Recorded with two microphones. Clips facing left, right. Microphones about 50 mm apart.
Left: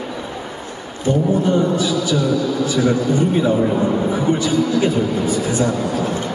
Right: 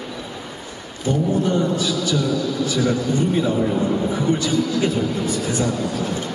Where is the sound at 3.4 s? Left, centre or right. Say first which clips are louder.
Left 3 dB; centre.